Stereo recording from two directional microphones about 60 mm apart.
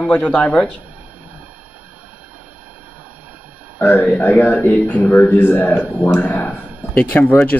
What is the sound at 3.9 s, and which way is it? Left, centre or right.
Speech, centre.